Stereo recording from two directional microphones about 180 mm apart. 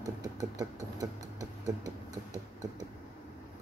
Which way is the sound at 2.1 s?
20° right (ahead or behind).